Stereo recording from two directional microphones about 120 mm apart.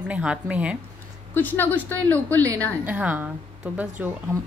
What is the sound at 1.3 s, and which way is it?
A woman's voice, 15° left (ahead or behind).